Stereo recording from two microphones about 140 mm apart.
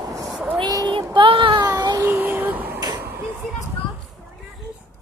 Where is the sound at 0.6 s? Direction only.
30° right (ahead or behind).